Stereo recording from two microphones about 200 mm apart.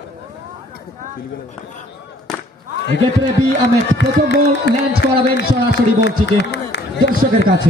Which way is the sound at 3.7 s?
60° left (ahead or behind).